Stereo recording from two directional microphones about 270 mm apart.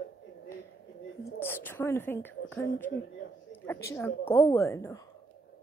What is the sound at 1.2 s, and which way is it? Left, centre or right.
Speech, centre.